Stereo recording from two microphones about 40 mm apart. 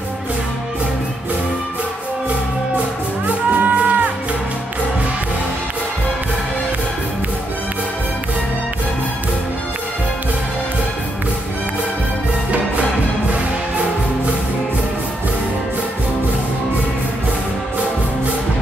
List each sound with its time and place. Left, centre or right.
3.3 s music: right